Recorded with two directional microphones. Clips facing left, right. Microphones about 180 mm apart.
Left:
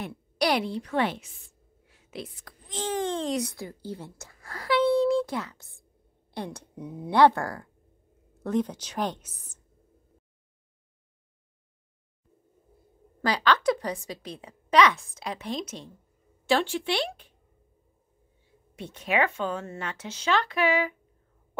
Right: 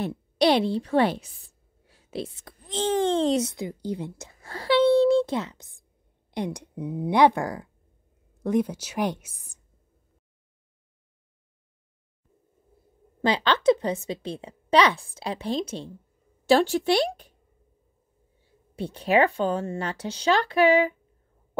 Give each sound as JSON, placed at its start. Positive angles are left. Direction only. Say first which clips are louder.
{"t": 0.1, "sound": "a woman's voice", "louder": "right 4 dB", "side_deg": -25}
{"t": 13.2, "sound": "a woman's voice", "louder": "right 2 dB", "side_deg": -25}
{"t": 18.8, "sound": "speech", "louder": "right 5 dB", "side_deg": -35}